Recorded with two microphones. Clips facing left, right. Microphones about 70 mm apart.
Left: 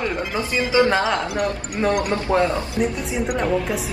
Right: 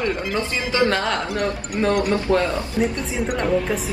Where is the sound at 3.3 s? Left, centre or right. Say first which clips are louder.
Right 1 dB; centre.